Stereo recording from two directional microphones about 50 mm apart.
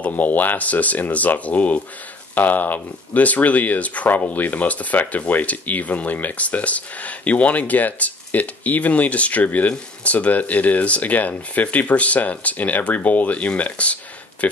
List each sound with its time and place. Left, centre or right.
0.0 s speech: left